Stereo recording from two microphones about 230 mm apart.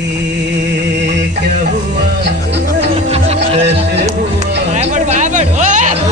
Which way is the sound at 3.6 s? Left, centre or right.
Right.